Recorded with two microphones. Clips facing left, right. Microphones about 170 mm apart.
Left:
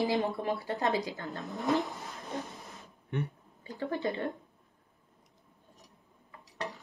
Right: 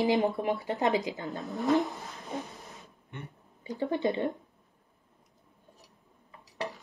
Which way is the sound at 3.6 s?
20° right (ahead or behind).